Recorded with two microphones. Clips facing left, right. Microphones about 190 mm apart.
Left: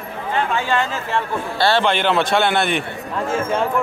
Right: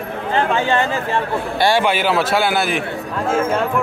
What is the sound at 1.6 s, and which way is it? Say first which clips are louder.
A man's voice: right 1 dB; 10° right (ahead or behind).